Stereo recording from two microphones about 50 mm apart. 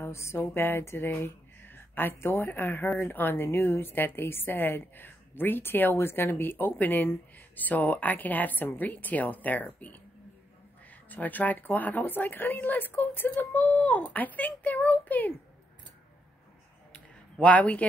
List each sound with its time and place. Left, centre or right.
0.1 s speech: left
0.4 s a woman's voice: left
16.9 s a sound: left